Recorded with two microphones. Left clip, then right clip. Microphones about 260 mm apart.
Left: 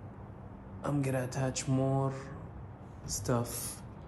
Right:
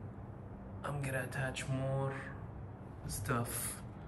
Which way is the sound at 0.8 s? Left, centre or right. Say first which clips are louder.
Left 6 dB; left.